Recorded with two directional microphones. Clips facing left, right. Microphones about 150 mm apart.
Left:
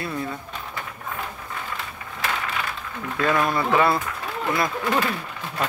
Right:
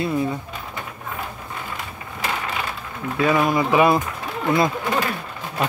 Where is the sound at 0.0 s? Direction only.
15° right (ahead or behind).